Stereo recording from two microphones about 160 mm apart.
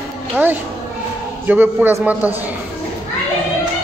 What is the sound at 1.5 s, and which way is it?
Speech, 10° right (ahead or behind).